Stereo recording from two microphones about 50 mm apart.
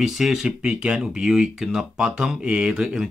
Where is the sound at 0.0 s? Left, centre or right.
Centre.